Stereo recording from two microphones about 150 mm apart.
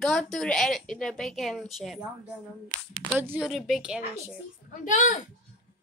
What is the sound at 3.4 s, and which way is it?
Speech, centre (ahead or behind).